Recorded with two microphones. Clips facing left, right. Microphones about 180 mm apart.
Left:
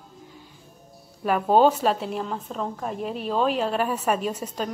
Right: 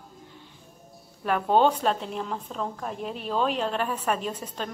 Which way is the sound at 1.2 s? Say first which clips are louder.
Left 3 dB; 10° left (ahead or behind).